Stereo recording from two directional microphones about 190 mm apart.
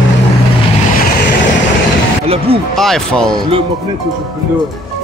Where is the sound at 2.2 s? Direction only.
30° right (ahead or behind).